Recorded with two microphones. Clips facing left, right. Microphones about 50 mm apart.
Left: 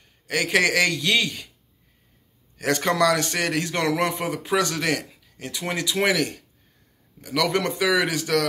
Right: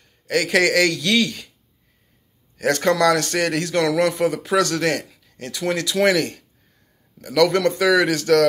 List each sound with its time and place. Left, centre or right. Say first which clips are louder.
0.3 s a man's voice: right 3 dB; centre
2.6 s a man's voice: right 3 dB; centre
7.3 s a man's voice: right 6 dB; centre